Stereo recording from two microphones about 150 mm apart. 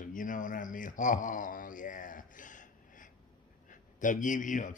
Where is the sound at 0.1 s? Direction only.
60° left (ahead or behind).